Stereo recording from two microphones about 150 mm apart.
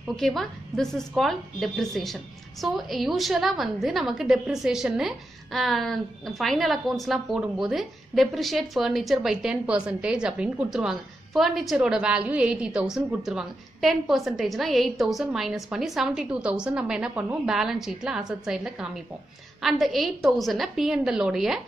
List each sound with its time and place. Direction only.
0.1 s a woman's voice: centre (ahead or behind)